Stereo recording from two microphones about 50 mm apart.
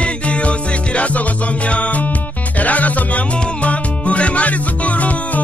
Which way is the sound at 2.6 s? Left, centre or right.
Left.